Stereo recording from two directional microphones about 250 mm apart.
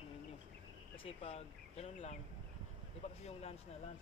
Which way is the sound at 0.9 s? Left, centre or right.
Left.